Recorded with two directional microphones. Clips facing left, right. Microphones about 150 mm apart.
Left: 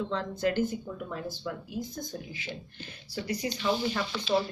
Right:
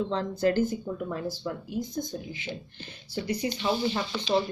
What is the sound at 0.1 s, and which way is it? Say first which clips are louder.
Speech: right 4 dB; 35° right (ahead or behind).